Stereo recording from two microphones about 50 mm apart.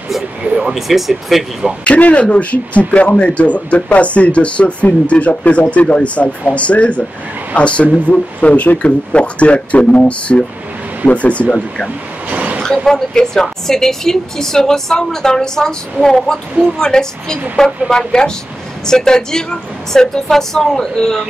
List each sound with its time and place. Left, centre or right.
0.4 s a sound: centre
0.7 s speech: centre
1.9 s speech: left
12.3 s vehicle: right
12.6 s a woman's voice: centre